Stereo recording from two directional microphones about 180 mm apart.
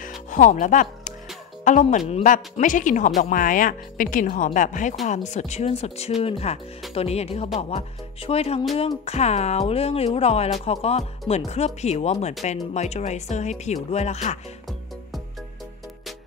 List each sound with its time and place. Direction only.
0.0 s music: 45° left (ahead or behind)
1.6 s a woman's voice: 45° left (ahead or behind)